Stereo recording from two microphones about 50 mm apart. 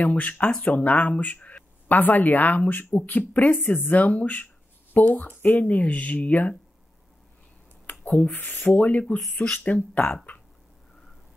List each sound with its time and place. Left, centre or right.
0.0 s speech: left
8.0 s speech: left